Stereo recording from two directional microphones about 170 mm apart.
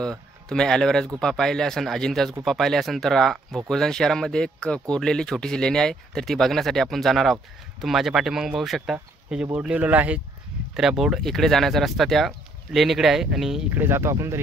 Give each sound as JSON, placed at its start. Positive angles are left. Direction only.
{"t": 0.0, "sound": "speech", "side_deg": 5}